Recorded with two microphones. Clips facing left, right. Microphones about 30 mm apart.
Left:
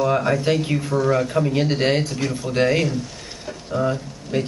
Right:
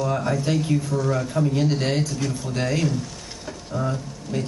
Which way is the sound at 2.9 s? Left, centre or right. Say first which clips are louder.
Left 1 dB; centre.